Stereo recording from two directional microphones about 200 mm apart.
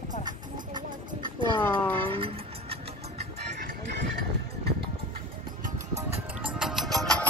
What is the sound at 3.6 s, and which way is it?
Music, 60° right (ahead or behind).